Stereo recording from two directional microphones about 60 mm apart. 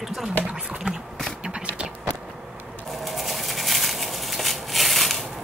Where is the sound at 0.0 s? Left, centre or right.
Centre.